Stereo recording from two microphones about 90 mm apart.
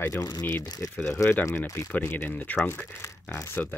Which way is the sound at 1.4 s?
30° left (ahead or behind).